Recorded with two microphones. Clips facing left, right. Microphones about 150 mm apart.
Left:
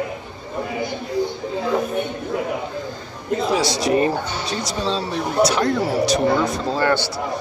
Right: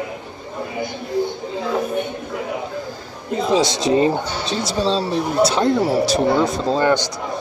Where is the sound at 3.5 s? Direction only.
20° right (ahead or behind).